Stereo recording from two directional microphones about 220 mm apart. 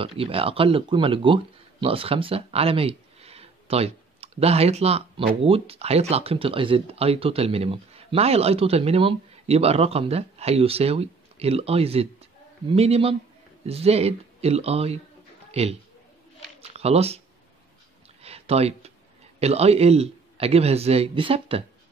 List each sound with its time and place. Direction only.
0.0 s a man's voice: 25° right (ahead or behind)
18.2 s a sound: 30° right (ahead or behind)
19.4 s a man's voice: 30° right (ahead or behind)